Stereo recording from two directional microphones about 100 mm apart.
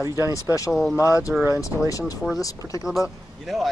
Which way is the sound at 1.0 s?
30° left (ahead or behind).